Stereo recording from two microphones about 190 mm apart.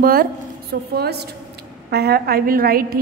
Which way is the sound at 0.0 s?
50° right (ahead or behind).